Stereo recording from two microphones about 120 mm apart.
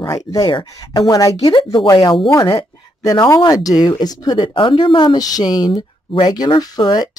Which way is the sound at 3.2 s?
30° left (ahead or behind).